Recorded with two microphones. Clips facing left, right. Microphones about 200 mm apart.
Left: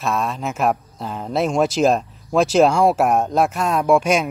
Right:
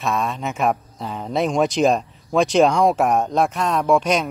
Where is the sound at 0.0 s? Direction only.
Centre (ahead or behind).